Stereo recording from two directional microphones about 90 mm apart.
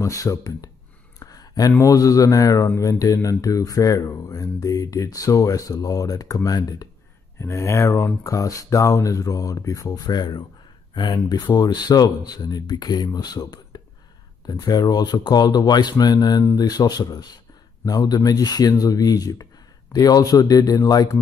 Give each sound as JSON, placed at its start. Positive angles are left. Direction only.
{"t": 0.0, "sound": "speech", "side_deg": 40}
{"t": 1.2, "sound": "a sound", "side_deg": 45}
{"t": 1.8, "sound": "speech", "side_deg": 40}
{"t": 7.3, "sound": "speech", "side_deg": 30}